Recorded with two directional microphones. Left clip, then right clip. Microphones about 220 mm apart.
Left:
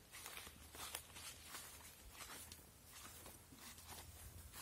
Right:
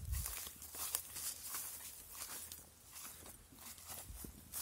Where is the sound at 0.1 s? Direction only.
50° right (ahead or behind).